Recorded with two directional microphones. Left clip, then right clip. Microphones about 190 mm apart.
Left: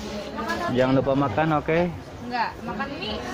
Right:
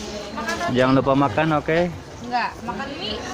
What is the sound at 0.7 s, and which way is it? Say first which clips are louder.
Speech: right 4 dB; 20° right (ahead or behind).